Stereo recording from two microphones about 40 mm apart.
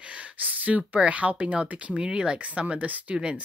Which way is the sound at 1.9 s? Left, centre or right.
Right.